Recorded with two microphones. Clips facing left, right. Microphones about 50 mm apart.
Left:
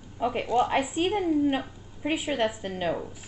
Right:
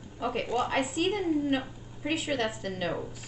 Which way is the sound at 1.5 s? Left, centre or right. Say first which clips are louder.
Left 2 dB; left.